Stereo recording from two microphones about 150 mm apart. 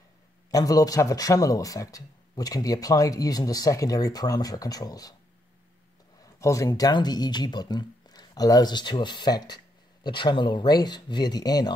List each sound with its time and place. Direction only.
0.5 s speech: 25° left (ahead or behind)
6.2 s speech: 20° left (ahead or behind)